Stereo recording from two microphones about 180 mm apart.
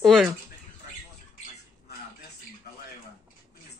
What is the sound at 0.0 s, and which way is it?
Speech, centre (ahead or behind).